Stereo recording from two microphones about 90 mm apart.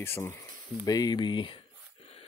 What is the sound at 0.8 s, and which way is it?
Speech, 45° left (ahead or behind).